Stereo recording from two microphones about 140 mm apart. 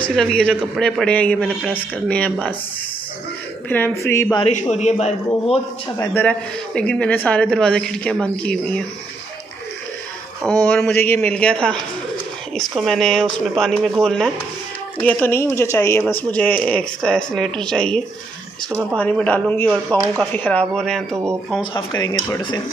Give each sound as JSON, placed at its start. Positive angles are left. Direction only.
{"t": 0.0, "sound": "speech", "side_deg": 5}
{"t": 3.6, "sound": "speech", "side_deg": 15}
{"t": 4.5, "sound": "a man's voice", "side_deg": 55}
{"t": 5.9, "sound": "speech", "side_deg": 10}
{"t": 10.4, "sound": "speech", "side_deg": 15}
{"t": 18.7, "sound": "speech", "side_deg": -15}
{"t": 18.9, "sound": "speech", "side_deg": 10}
{"t": 21.7, "sound": "speech", "side_deg": 25}